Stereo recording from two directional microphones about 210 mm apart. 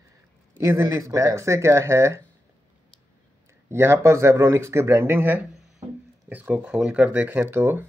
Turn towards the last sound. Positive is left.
turn(degrees=-10)  # may be behind; listen again after turning